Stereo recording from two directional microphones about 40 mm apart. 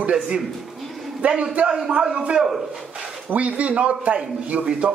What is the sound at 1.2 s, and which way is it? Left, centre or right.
Speech, right.